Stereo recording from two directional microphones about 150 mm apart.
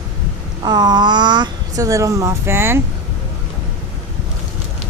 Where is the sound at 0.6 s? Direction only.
30° right (ahead or behind).